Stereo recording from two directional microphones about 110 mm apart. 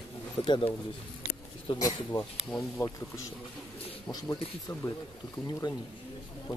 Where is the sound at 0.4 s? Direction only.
40° left (ahead or behind).